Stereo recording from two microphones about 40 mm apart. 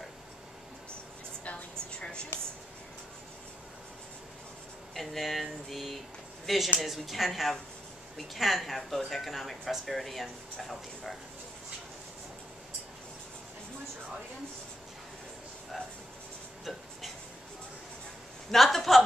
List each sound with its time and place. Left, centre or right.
1.4 s a sound: left
4.9 s speech: centre
18.5 s speech: centre